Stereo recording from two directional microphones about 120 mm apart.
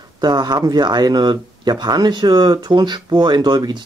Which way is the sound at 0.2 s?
35° right (ahead or behind).